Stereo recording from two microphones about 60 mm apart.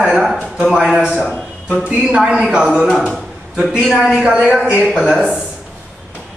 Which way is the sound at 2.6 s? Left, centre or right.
Centre.